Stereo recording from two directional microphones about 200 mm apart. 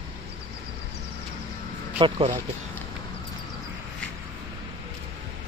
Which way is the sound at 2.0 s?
30° right (ahead or behind).